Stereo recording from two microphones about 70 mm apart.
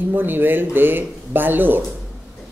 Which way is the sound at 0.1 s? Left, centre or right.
Right.